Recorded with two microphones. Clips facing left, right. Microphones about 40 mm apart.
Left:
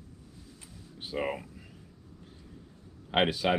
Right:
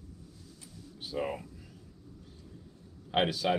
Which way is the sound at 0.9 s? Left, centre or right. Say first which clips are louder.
Left 2 dB; left.